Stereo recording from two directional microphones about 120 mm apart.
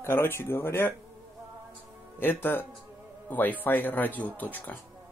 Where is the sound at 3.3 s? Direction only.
15° left (ahead or behind).